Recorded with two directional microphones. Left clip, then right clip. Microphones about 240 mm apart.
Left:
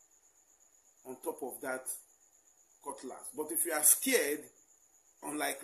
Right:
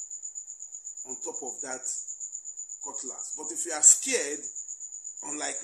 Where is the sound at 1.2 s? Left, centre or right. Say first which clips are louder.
Even; centre.